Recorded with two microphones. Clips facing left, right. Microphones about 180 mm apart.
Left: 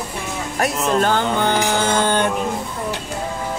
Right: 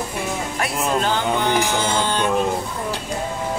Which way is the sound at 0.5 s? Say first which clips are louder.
Left 5 dB; 45° left (ahead or behind).